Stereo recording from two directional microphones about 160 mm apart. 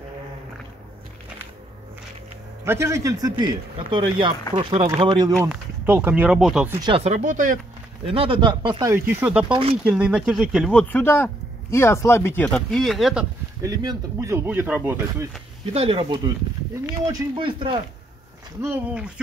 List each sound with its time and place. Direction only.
2.6 s speech: 15° right (ahead or behind)
5.5 s speech: 15° right (ahead or behind)
6.8 s speech: 35° right (ahead or behind)
7.2 s speech: 55° right (ahead or behind)
8.1 s speech: 35° right (ahead or behind)
8.9 s speech: 10° right (ahead or behind)
9.5 s speech: 35° right (ahead or behind)
9.8 s speech: 10° right (ahead or behind)
13.6 s speech: 20° right (ahead or behind)
15.7 s speech: 40° right (ahead or behind)
18.6 s speech: 10° right (ahead or behind)